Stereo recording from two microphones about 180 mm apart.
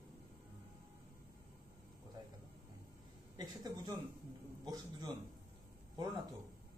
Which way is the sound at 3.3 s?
20° right (ahead or behind).